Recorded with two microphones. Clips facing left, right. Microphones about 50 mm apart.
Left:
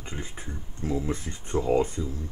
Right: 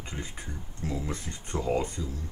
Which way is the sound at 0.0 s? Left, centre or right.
Left.